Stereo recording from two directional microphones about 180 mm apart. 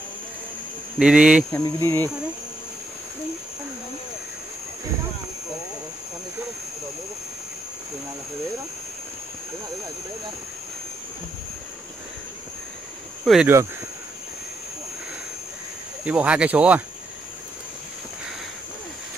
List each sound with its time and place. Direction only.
0.9 s speech: 5° right (ahead or behind)
1.5 s speech: 15° left (ahead or behind)
13.2 s speech: centre (ahead or behind)
16.0 s speech: 5° right (ahead or behind)